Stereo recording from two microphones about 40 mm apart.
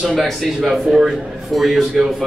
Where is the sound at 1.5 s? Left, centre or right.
Centre.